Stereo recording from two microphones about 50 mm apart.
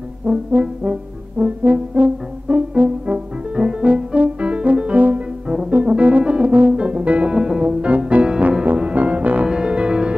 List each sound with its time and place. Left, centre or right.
0.5 s brass instrument: right
3.5 s music: right